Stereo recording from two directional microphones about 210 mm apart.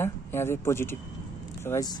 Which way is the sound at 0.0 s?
10° left (ahead or behind).